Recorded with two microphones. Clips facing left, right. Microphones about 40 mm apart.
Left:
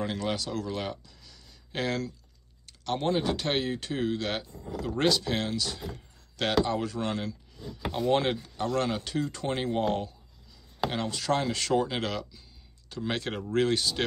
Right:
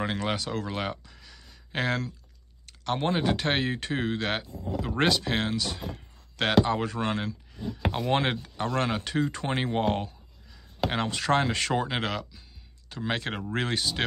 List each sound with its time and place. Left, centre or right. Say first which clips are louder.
0.0 s speech: right 2 dB; right
1.7 s speech: right 2 dB; centre